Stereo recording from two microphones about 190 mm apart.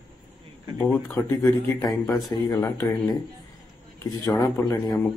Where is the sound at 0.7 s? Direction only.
10° left (ahead or behind).